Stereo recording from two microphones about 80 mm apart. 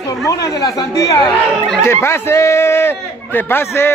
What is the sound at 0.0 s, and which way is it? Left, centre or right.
Speech, left.